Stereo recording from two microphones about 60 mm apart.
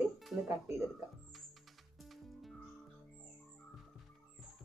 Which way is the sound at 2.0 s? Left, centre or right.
Centre.